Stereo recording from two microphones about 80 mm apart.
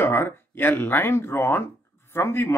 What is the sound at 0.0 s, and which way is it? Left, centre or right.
Speech, left.